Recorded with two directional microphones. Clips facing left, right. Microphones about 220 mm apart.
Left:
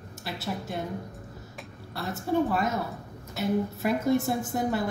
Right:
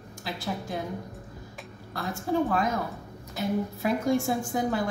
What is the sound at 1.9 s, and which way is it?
A woman's voice, 5° left (ahead or behind).